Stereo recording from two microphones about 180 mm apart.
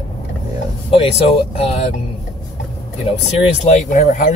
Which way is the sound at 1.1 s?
35° left (ahead or behind).